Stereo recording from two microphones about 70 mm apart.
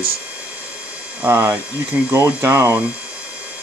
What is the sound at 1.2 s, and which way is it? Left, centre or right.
Speech, right.